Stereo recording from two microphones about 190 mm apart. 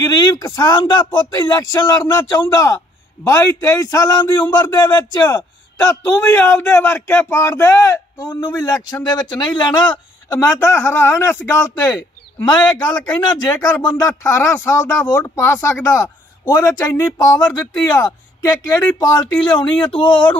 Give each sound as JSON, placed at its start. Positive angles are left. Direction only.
{"t": 0.0, "sound": "speech", "side_deg": 20}